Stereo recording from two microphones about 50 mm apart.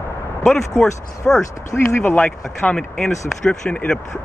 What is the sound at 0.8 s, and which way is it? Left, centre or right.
Speech, centre.